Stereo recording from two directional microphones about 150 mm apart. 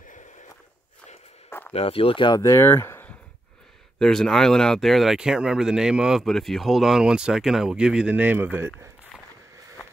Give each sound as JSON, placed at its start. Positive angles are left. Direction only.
{"t": 1.7, "sound": "speech", "side_deg": 40}
{"t": 2.4, "sound": "speech", "side_deg": 15}
{"t": 4.0, "sound": "speech", "side_deg": 5}